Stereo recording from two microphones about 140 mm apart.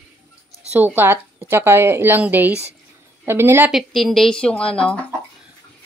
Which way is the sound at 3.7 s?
Centre (ahead or behind).